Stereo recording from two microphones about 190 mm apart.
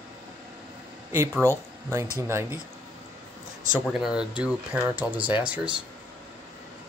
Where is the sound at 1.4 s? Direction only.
15° right (ahead or behind).